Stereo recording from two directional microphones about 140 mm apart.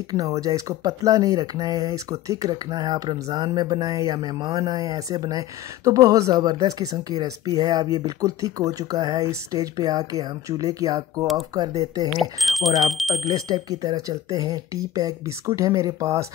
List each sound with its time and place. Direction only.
0.1 s speech: 25° right (ahead or behind)
12.1 s speech: centre (ahead or behind)
13.3 s speech: 30° right (ahead or behind)